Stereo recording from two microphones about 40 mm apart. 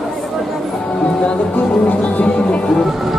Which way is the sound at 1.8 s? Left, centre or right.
Left.